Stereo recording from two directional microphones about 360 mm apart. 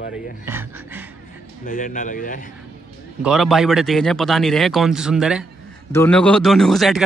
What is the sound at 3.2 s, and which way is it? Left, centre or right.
Speech, centre.